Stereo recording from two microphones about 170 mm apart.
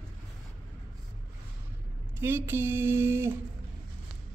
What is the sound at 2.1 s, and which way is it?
Speech, 15° right (ahead or behind).